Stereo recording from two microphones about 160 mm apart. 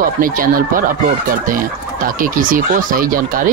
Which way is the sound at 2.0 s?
60° right (ahead or behind).